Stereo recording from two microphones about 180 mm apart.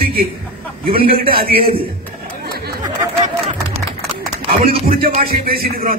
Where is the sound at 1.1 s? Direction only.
55° right (ahead or behind).